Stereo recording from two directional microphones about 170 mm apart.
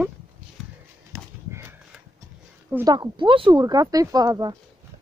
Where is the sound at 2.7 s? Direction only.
20° right (ahead or behind).